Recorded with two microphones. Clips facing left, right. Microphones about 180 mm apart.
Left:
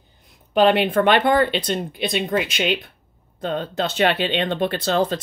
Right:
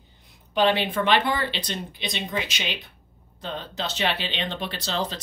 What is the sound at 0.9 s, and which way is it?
Speech, 55° left (ahead or behind).